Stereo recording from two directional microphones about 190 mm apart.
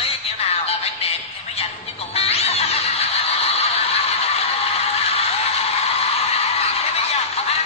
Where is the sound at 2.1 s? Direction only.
30° left (ahead or behind).